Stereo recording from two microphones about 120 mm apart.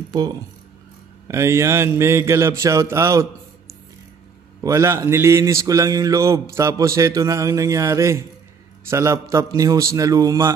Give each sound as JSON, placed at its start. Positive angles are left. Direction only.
{"t": 0.1, "sound": "speech", "side_deg": -35}
{"t": 1.2, "sound": "speech", "side_deg": -25}
{"t": 4.6, "sound": "speech", "side_deg": -25}